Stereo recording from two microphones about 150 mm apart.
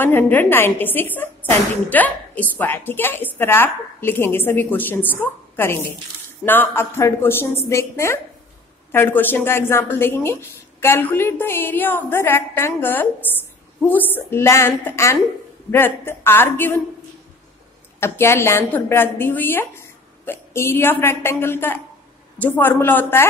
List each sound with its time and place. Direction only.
0.0 s a woman's voice: 15° left (ahead or behind)
18.0 s a woman's voice: 15° left (ahead or behind)